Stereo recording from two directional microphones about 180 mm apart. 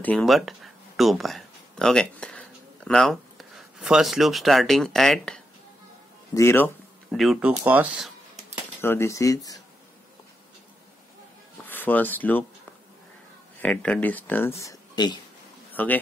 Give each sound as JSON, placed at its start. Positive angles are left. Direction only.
{"t": 0.0, "sound": "speech", "side_deg": 5}
{"t": 6.3, "sound": "a sound", "side_deg": 15}
{"t": 7.2, "sound": "speech", "side_deg": -5}
{"t": 8.8, "sound": "speech", "side_deg": 15}
{"t": 11.6, "sound": "speech", "side_deg": 10}
{"t": 13.6, "sound": "speech", "side_deg": 5}
{"t": 15.7, "sound": "speech", "side_deg": 10}